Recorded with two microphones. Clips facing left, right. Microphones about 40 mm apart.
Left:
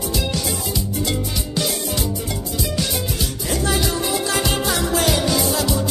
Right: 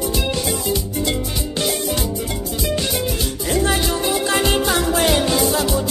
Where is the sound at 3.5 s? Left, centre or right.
Right.